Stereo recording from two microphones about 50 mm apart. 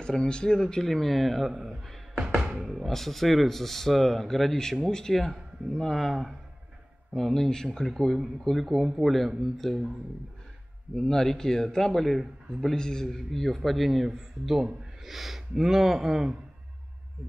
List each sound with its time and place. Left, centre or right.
0.0 s a man's voice: centre
7.2 s speech: centre
11.0 s a man's voice: centre